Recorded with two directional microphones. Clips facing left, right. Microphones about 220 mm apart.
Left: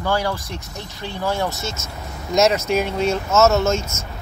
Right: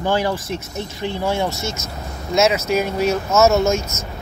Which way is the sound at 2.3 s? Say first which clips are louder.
Even; 5° right (ahead or behind).